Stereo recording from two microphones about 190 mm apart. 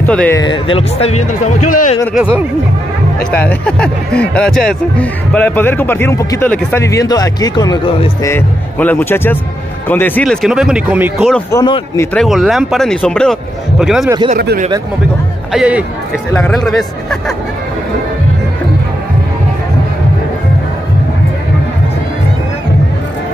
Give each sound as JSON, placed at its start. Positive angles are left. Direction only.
{"t": 0.0, "sound": "speech", "side_deg": 10}
{"t": 0.4, "sound": "speech", "side_deg": 25}
{"t": 3.4, "sound": "a man's voice", "side_deg": 5}
{"t": 11.5, "sound": "speech", "side_deg": 20}
{"t": 12.1, "sound": "a man's voice", "side_deg": 0}
{"t": 14.0, "sound": "speech", "side_deg": -20}
{"t": 15.5, "sound": "a man's voice", "side_deg": -5}